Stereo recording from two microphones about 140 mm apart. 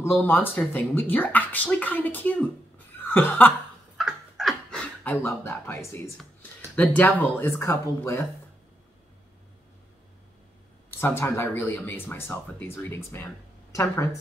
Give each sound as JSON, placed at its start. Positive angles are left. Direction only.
{"t": 0.0, "sound": "speech", "side_deg": 15}
{"t": 3.0, "sound": "chuckle", "side_deg": 15}
{"t": 4.0, "sound": "a sound", "side_deg": 0}
{"t": 6.1, "sound": "speech", "side_deg": 10}
{"t": 10.9, "sound": "speech", "side_deg": 15}